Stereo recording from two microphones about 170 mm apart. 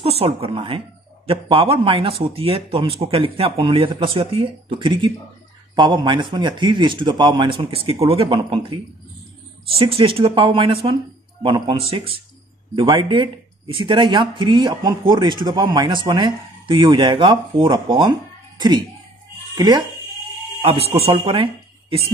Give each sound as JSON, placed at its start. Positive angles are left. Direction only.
{"t": 0.0, "sound": "speech", "side_deg": -35}
{"t": 19.5, "sound": "speech", "side_deg": -25}
{"t": 20.6, "sound": "speech", "side_deg": -35}